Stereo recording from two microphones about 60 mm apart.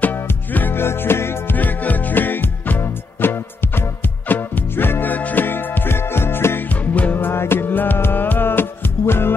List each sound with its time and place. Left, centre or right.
0.0 s music: left
1.6 s music: left